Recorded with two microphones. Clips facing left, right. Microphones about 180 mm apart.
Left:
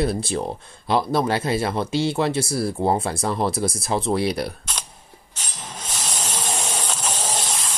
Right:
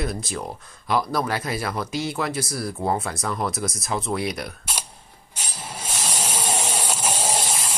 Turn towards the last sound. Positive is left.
turn(degrees=-10)  # may be behind; listen again after turning